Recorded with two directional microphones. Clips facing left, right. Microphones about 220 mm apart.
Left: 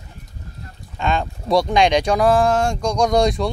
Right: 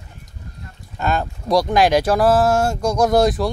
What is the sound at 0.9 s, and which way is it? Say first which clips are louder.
Speech: even; 5° right (ahead or behind).